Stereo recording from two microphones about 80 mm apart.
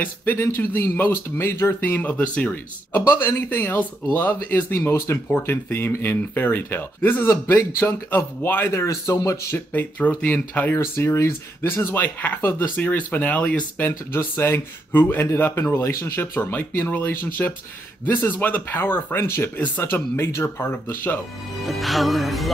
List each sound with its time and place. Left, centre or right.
0.0 s speech: left
3.2 s speech: left
9.2 s speech: left
9.7 s speech: centre
10.8 s speech: left
21.6 s music: centre